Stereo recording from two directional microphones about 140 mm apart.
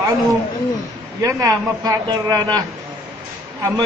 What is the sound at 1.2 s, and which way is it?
A man's voice, 25° right (ahead or behind).